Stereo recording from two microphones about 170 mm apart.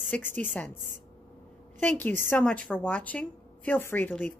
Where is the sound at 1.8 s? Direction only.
10° left (ahead or behind).